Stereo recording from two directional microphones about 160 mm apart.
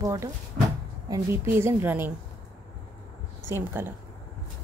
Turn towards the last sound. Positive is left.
turn(degrees=-15)  # may be behind; listen again after turning